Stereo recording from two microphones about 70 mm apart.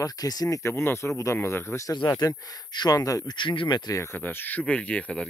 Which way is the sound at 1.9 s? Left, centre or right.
Left.